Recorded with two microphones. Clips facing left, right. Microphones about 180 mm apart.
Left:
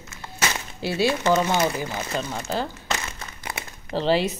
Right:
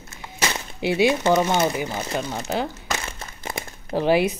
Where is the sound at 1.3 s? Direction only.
15° right (ahead or behind).